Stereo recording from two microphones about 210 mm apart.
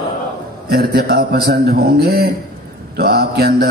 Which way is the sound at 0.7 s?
45° right (ahead or behind).